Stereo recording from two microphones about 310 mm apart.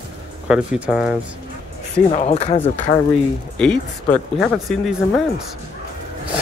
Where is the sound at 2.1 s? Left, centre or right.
Centre.